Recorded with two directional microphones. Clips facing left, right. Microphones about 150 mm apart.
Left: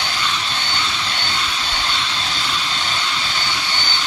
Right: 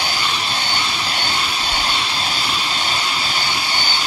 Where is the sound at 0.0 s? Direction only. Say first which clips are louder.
Right 1 dB; 10° right (ahead or behind).